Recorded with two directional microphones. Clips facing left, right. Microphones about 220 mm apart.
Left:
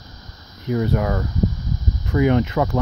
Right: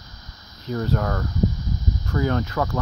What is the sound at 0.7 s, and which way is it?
Speech, 10° left (ahead or behind).